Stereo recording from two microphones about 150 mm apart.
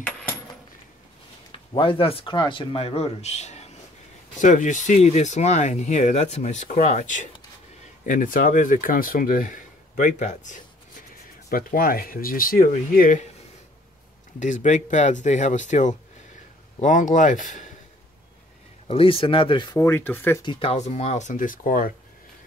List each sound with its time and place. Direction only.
1.5 s speech: 35° left (ahead or behind); by 10.6 s 55° left (ahead or behind)
11.4 s speech: 75° left (ahead or behind)
14.4 s speech: 55° left (ahead or behind)
18.9 s speech: 40° left (ahead or behind)
19.8 s speech: 15° left (ahead or behind)
20.4 s speech: 35° left (ahead or behind)
20.7 s speech: 50° left (ahead or behind); by 21.9 s 65° left (ahead or behind)